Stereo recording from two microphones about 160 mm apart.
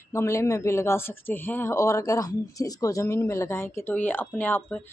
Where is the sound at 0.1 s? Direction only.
15° left (ahead or behind).